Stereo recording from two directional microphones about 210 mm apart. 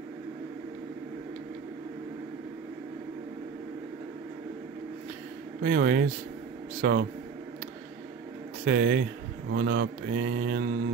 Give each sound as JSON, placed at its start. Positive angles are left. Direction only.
{"t": 5.6, "sound": "speech", "side_deg": -45}
{"t": 8.6, "sound": "speech", "side_deg": -50}